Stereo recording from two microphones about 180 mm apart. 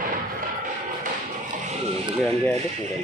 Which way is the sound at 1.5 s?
35° right (ahead or behind).